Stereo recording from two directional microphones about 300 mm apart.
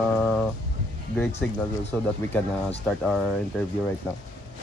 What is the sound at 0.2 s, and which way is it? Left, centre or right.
Music, centre.